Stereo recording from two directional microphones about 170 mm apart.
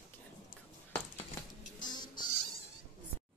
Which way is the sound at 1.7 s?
25° left (ahead or behind).